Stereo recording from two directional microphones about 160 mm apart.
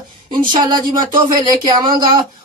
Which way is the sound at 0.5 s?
25° right (ahead or behind).